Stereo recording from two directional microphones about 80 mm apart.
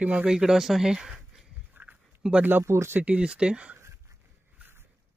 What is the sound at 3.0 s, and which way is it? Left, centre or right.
Speech, centre.